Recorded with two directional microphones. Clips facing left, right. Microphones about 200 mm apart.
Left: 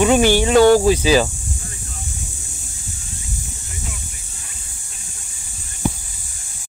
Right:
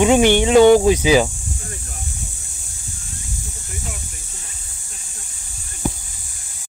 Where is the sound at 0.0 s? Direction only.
20° right (ahead or behind).